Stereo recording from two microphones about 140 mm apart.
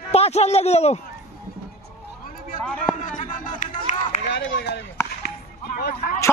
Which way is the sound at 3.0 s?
70° left (ahead or behind).